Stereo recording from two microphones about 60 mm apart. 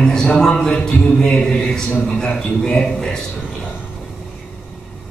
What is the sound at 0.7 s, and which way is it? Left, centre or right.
Speech, left.